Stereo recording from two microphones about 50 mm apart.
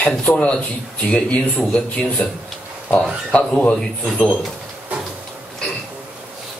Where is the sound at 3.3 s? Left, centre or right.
Left.